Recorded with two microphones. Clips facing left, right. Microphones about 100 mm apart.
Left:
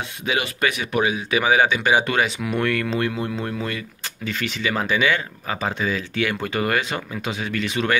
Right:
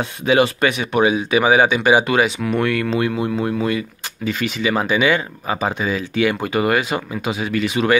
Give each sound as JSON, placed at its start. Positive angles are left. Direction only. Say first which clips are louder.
{"t": 0.0, "sound": "speech", "louder": "right 9 dB", "side_deg": -35}